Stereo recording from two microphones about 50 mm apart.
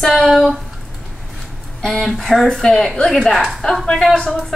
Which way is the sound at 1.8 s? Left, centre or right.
Centre.